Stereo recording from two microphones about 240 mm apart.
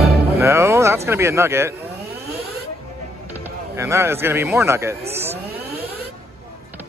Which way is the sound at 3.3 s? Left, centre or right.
Centre.